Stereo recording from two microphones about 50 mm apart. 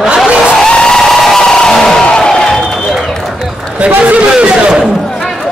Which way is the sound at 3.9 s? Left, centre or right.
Right.